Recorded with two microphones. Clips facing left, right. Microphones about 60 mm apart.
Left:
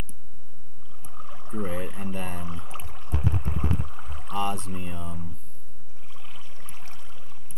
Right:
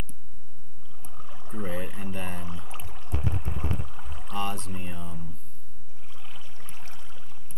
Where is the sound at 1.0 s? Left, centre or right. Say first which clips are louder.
Left 3 dB; centre.